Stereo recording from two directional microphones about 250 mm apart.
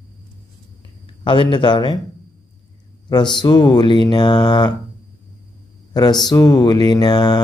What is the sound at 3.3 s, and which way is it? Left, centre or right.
Mantra, centre.